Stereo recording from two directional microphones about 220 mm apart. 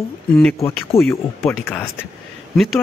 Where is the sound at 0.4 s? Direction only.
10° left (ahead or behind).